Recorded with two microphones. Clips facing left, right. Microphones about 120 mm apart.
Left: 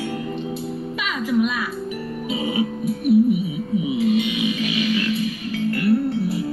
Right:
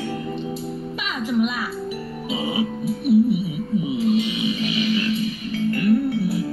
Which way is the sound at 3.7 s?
40° right (ahead or behind).